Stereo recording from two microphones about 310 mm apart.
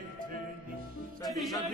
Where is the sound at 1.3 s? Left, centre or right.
Centre.